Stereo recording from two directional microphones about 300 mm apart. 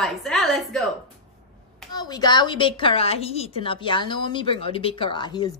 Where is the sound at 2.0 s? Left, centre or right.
Centre.